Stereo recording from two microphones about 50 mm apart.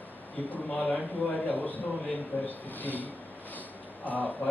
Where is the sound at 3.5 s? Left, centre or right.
Left.